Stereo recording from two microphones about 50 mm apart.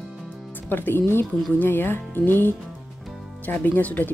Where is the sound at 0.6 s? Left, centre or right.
Left.